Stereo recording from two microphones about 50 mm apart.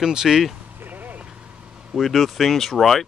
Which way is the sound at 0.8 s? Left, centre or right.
Right.